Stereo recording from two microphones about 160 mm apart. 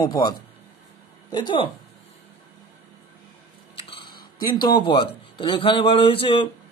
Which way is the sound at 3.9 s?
30° left (ahead or behind).